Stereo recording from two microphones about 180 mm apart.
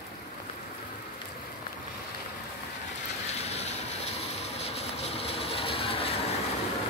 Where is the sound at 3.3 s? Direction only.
35° left (ahead or behind).